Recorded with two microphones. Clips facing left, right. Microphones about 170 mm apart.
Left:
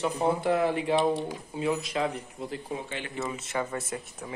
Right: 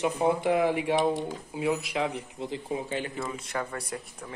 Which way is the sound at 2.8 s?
40° right (ahead or behind).